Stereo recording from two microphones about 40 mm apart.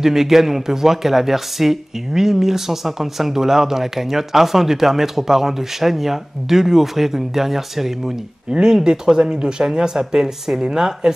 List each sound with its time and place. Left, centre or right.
0.0 s a man's voice: centre
8.5 s a man's voice: right